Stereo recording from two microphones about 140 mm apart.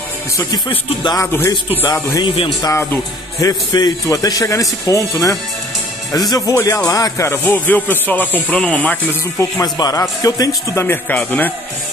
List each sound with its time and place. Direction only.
0.5 s speech: 35° left (ahead or behind)
1.1 s speech: 15° left (ahead or behind)
3.3 s a man's voice: 30° left (ahead or behind); by 8.9 s 10° left (ahead or behind)
9.4 s a man's voice: 25° left (ahead or behind); by 11.5 s 10° left (ahead or behind)